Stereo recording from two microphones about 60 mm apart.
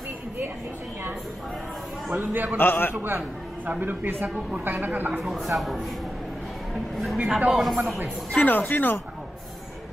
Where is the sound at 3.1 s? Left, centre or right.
Right.